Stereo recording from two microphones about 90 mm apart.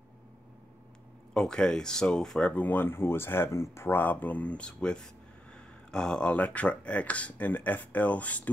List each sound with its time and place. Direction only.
1.3 s speech: 10° left (ahead or behind)